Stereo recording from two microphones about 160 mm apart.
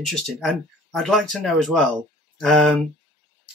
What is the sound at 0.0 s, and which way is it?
Speech, centre (ahead or behind).